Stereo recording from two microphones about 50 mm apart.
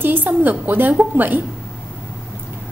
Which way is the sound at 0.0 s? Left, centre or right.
Right.